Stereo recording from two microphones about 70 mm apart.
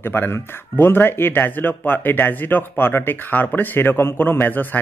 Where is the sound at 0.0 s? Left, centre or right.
Left.